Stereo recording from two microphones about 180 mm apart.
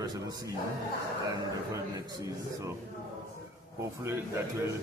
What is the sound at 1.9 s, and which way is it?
Speech, 15° right (ahead or behind).